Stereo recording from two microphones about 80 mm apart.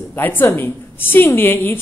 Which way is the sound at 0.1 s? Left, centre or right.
Left.